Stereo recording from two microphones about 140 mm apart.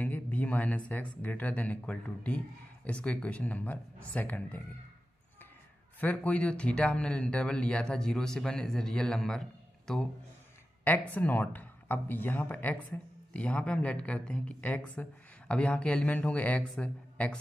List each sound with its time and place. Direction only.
0.0 s speech: 10° left (ahead or behind)
5.9 s speech: 10° left (ahead or behind)